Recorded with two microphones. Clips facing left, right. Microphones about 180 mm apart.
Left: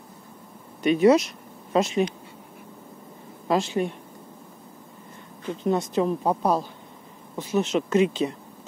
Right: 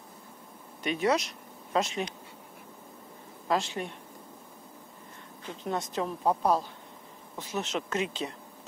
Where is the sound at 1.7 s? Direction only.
10° left (ahead or behind).